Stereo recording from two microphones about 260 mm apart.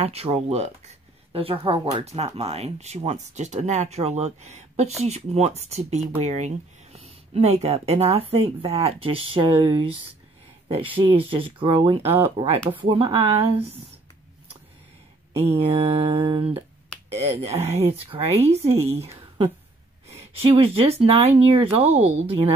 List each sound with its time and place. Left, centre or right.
0.0 s speech: right
15.4 s speech: right